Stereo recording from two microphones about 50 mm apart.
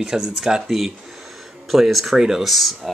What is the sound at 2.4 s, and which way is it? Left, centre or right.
Speech, centre.